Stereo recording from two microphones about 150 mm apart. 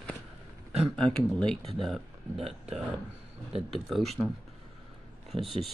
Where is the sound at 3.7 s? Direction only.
Centre (ahead or behind).